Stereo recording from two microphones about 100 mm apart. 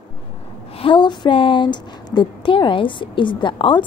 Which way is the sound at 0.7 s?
60° left (ahead or behind).